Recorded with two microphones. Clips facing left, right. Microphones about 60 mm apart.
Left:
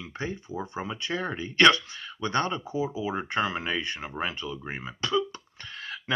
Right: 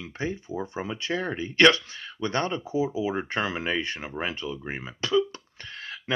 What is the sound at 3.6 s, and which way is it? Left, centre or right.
Speech, right.